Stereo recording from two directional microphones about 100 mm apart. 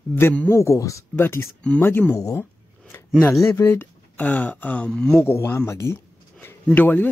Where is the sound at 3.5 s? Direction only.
20° left (ahead or behind); by 5.2 s 5° left (ahead or behind).